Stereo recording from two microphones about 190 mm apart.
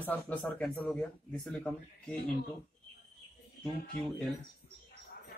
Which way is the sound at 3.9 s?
35° right (ahead or behind).